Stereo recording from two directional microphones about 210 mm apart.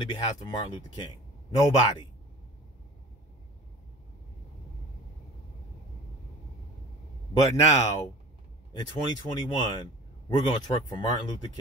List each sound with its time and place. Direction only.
0.0 s speech: 20° left (ahead or behind)
7.3 s speech: 15° left (ahead or behind)